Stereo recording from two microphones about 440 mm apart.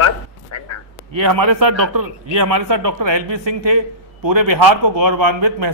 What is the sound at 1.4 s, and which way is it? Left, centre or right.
Speech, right.